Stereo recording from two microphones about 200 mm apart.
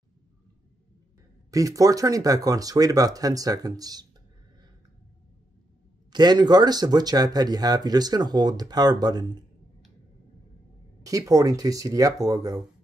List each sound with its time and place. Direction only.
1.5 s speech: 15° right (ahead or behind)
6.1 s speech: 20° right (ahead or behind)
11.1 s speech: 15° right (ahead or behind)